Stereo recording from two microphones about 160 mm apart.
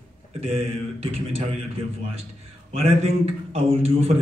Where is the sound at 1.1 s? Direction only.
40° right (ahead or behind).